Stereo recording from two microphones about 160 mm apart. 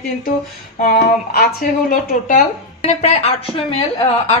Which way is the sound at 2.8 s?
40° left (ahead or behind).